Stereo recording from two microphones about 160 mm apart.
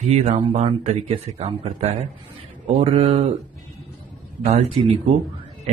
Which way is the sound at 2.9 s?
35° right (ahead or behind).